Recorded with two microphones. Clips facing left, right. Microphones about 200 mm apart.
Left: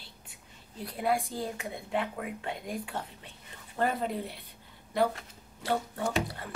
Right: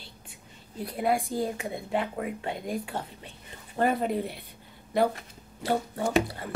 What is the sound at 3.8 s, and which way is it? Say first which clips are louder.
Speech: right 4 dB; 15° right (ahead or behind).